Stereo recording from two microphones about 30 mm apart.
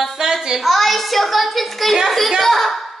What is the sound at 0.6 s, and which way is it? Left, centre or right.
A child's voice, centre.